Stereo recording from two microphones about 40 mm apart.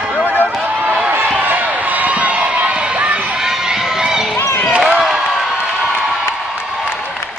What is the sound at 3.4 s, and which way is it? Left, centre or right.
Crowd, centre.